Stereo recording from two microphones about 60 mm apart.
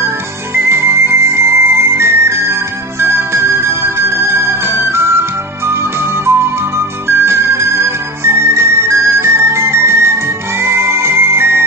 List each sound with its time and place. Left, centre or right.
0.7 s music: right